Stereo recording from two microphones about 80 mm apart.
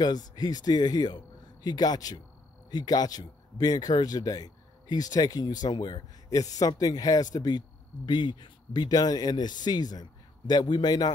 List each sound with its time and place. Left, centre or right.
0.0 s speech: left